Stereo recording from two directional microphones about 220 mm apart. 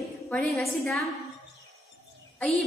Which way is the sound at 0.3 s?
Centre (ahead or behind).